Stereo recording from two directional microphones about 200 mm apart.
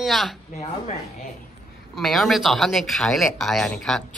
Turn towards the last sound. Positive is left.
turn(degrees=0)  # may be behind; listen again after turning